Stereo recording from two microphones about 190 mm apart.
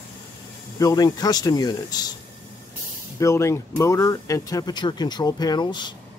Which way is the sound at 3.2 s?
15° left (ahead or behind).